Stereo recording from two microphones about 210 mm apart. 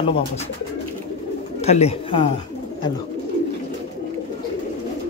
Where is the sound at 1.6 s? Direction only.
30° left (ahead or behind).